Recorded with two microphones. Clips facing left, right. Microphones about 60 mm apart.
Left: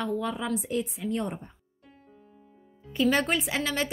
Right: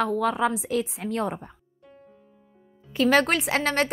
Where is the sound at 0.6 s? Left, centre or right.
Right.